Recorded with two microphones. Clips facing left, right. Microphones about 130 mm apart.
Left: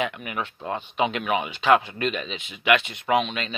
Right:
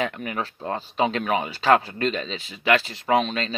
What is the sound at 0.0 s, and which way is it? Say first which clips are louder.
Speech: right 1 dB; 40° right (ahead or behind).